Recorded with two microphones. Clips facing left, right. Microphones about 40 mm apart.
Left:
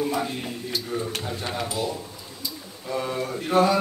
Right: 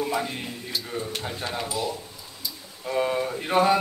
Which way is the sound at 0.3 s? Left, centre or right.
Centre.